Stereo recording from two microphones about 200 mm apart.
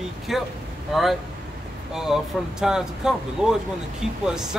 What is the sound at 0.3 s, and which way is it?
Speech, centre (ahead or behind).